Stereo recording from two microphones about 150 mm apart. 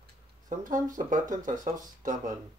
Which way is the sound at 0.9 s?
60° right (ahead or behind).